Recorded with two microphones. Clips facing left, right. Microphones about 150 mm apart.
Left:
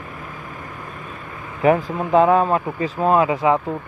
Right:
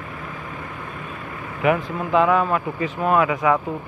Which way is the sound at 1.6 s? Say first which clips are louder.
Left 4 dB; 35° left (ahead or behind).